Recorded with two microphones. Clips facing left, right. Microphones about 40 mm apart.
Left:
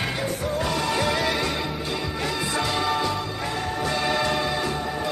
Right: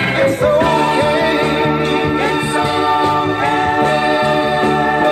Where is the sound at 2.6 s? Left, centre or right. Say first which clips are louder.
Right 9 dB; right.